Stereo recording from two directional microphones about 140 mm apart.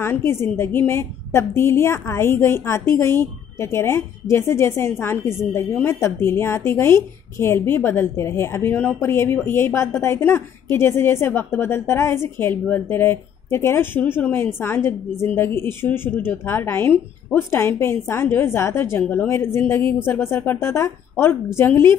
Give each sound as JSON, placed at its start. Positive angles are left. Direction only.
{"t": 0.0, "sound": "a woman's voice", "side_deg": 15}